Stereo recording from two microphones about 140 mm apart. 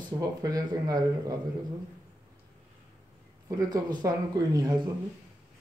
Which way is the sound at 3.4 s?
25° right (ahead or behind).